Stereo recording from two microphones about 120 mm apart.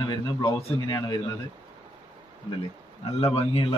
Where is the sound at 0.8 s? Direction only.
35° left (ahead or behind).